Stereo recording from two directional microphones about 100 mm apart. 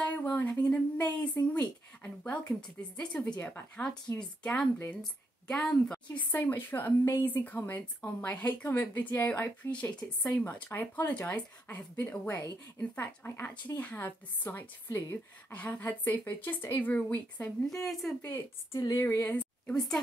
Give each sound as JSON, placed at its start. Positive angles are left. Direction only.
{"t": 0.0, "sound": "a sound", "side_deg": 15}
{"t": 3.0, "sound": "a woman's voice", "side_deg": 10}
{"t": 18.8, "sound": "speech", "side_deg": 40}
{"t": 19.0, "sound": "a woman's voice", "side_deg": 25}
{"t": 19.3, "sound": "a woman's voice", "side_deg": 10}